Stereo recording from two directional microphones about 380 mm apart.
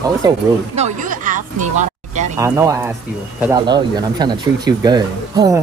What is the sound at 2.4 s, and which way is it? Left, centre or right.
Speech, centre.